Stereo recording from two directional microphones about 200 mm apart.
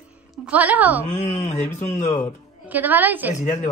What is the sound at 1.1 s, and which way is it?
Speech, 30° left (ahead or behind).